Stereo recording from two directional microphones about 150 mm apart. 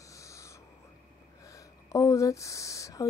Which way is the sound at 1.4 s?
20° left (ahead or behind).